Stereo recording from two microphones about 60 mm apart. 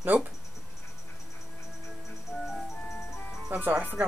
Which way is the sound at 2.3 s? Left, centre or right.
Left.